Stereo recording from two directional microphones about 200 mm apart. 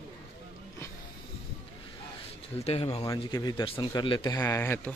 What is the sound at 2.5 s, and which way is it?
Speech, 30° left (ahead or behind).